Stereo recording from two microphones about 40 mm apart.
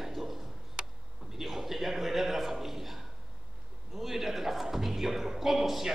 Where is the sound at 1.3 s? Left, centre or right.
Centre.